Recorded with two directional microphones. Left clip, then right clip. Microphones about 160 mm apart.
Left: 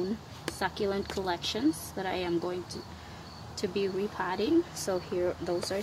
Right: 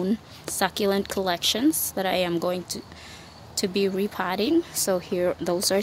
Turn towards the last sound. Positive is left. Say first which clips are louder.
# right 8 dB
turn(degrees=-90)